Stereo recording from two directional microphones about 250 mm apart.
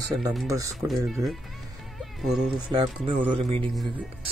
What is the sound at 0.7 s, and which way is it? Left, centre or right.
Speech, centre.